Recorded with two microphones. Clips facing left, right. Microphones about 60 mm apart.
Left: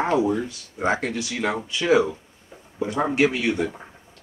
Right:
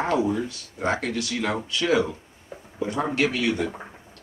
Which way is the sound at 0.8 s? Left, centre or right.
Centre.